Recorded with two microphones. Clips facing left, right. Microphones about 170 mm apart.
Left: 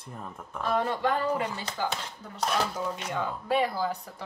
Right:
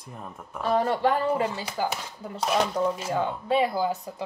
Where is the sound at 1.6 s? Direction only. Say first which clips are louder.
Right 3 dB; 10° right (ahead or behind).